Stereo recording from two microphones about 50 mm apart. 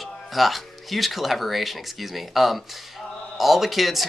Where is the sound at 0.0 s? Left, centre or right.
Centre.